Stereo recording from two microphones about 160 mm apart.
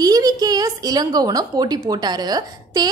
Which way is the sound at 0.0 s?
25° right (ahead or behind).